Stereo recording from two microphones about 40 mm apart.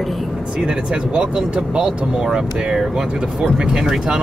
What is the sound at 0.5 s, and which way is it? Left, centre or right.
Speech, right.